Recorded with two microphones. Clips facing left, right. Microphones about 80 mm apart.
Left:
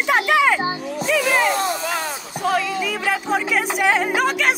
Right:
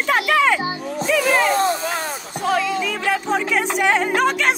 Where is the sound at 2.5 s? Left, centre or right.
Centre.